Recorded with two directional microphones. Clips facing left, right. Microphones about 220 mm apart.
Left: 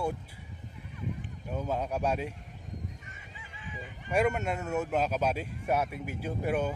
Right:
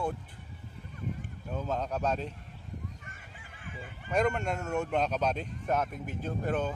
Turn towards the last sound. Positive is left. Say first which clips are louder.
# left 1 dB
turn(degrees=10)  # may be behind; listen again after turning